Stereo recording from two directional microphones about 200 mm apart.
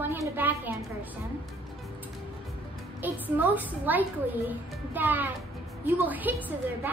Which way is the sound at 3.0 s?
10° right (ahead or behind).